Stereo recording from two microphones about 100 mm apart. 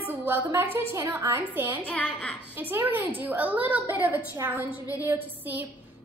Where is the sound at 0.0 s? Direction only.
20° right (ahead or behind).